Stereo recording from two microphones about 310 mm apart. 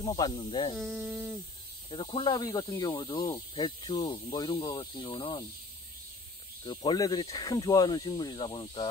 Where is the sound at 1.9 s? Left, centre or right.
Centre.